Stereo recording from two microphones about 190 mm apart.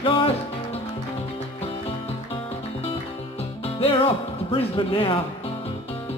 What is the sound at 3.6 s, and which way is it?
Music, 30° left (ahead or behind).